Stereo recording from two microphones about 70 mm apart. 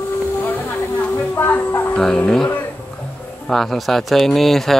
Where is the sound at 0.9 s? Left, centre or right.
Left.